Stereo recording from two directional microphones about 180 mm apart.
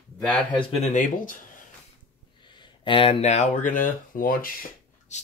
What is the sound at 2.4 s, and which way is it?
Speech, 25° left (ahead or behind).